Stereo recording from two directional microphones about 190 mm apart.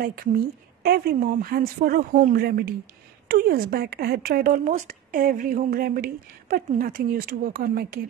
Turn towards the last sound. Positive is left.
turn(degrees=-50)  # may be behind; listen again after turning